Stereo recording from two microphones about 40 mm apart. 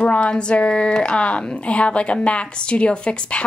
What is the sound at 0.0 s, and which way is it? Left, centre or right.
Speech, left.